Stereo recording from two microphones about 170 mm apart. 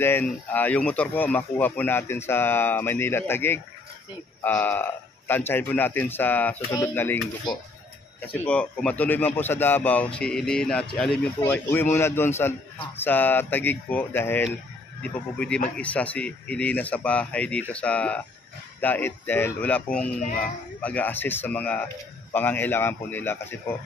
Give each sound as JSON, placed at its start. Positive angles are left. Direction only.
{"t": 0.0, "sound": "speech", "side_deg": 10}
{"t": 8.3, "sound": "speech", "side_deg": 5}